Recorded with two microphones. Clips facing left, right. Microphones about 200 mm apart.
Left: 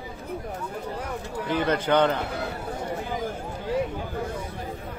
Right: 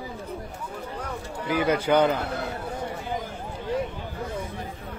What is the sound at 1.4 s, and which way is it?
A man's voice, 10° right (ahead or behind).